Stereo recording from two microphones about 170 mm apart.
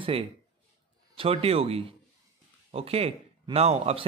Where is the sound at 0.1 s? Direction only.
35° right (ahead or behind).